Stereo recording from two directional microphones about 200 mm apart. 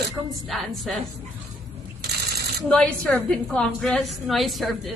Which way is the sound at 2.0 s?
55° right (ahead or behind).